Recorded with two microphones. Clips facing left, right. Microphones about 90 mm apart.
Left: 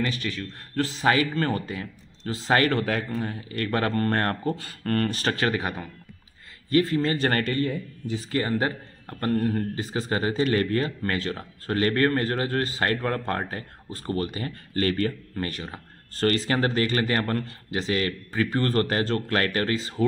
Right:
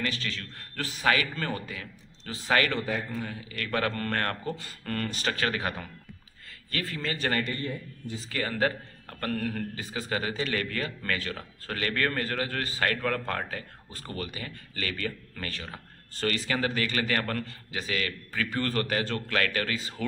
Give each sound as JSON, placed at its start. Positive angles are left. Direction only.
{"t": 0.0, "sound": "a man's voice", "side_deg": 20}
{"t": 0.7, "sound": "a man's voice", "side_deg": 30}
{"t": 1.2, "sound": "speech", "side_deg": 40}
{"t": 2.8, "sound": "speech", "side_deg": 80}
{"t": 3.2, "sound": "speech", "side_deg": 40}
{"t": 4.6, "sound": "speech", "side_deg": 50}
{"t": 5.3, "sound": "a man's voice", "side_deg": 25}
{"t": 7.1, "sound": "speech", "side_deg": 35}
{"t": 7.3, "sound": "speech", "side_deg": 65}
{"t": 8.3, "sound": "speech", "side_deg": 25}
{"t": 16.2, "sound": "speech", "side_deg": 40}